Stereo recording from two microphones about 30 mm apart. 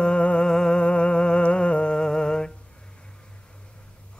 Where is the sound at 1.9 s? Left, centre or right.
Left.